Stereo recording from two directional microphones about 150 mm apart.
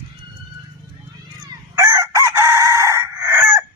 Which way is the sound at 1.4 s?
20° right (ahead or behind).